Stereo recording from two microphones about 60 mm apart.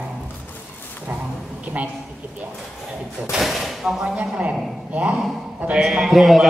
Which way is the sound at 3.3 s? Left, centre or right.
Centre.